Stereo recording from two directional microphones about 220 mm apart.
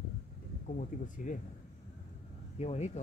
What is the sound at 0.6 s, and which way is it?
Speech, 35° left (ahead or behind).